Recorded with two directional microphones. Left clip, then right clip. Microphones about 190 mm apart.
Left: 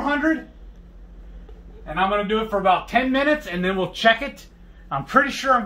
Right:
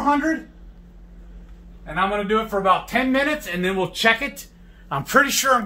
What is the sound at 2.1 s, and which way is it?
Speech, 25° right (ahead or behind).